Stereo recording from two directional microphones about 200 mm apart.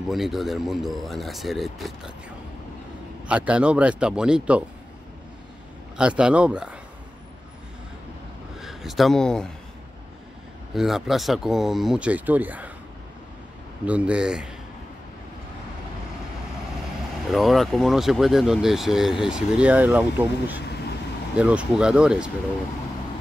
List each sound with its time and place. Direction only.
0.1 s speech: centre (ahead or behind)
5.9 s speech: 5° right (ahead or behind)
8.5 s a man's voice: centre (ahead or behind)
10.7 s speech: centre (ahead or behind)
13.8 s speech: 5° right (ahead or behind)
17.3 s speech: centre (ahead or behind)